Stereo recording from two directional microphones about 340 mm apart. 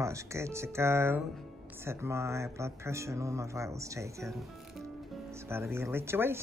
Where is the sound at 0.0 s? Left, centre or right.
Centre.